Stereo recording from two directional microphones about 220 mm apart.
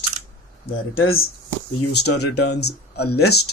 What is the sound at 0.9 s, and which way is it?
Speech, 70° left (ahead or behind).